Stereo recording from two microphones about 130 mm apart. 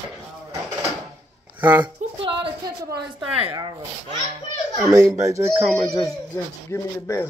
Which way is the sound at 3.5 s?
35° right (ahead or behind).